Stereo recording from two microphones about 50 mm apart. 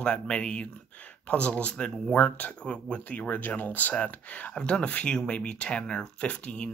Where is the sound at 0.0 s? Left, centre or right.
Centre.